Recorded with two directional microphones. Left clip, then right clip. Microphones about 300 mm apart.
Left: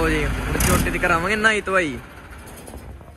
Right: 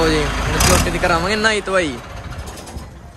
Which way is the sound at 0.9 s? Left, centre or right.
Centre.